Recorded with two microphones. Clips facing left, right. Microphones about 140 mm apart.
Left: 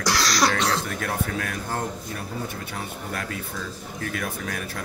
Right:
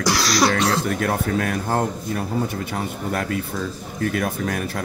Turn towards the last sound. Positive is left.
turn(degrees=-50)  # may be behind; listen again after turning